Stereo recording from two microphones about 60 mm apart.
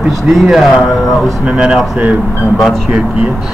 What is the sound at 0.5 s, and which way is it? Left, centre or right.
Speech, centre.